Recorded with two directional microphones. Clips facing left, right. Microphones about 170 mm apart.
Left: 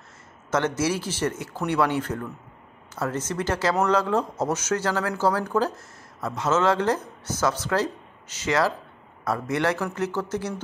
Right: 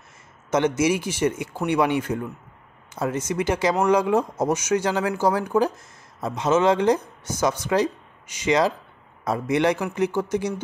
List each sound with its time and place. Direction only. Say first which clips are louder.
0.5 s speech: right 4 dB; 15° right (ahead or behind)